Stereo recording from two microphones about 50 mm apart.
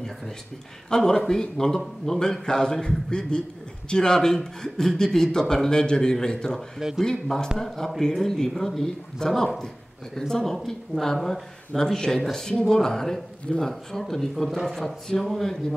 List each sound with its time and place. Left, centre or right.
0.8 s speech: centre